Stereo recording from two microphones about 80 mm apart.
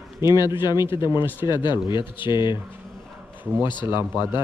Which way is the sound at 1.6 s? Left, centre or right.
Left.